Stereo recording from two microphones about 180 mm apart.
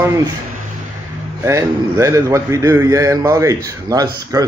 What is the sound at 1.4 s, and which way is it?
A man's voice, 15° right (ahead or behind).